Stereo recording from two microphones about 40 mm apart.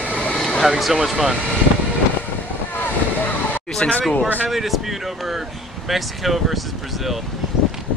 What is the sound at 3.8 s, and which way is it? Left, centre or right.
Speech, left.